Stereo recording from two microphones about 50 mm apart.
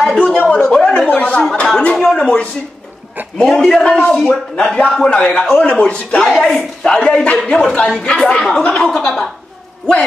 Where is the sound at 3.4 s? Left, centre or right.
Centre; by 6.2 s left.